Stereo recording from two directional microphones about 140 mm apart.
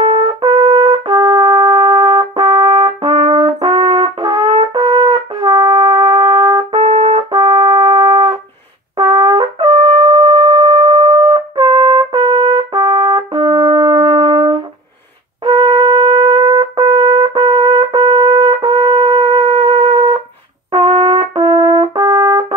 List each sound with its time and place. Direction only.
0.0 s trumpet: 35° right (ahead or behind)
8.9 s brass instrument: 30° right (ahead or behind)